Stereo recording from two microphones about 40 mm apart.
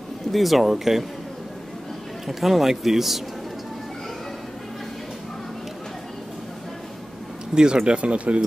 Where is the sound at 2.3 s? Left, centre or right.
Centre.